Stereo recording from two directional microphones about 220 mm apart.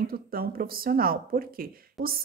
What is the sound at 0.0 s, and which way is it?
Speech, 40° right (ahead or behind).